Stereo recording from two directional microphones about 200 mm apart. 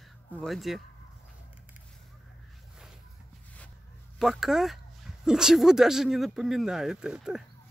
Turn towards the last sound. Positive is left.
turn(degrees=-5)  # may be behind; listen again after turning